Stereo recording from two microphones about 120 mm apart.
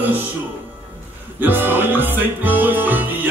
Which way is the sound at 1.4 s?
15° right (ahead or behind).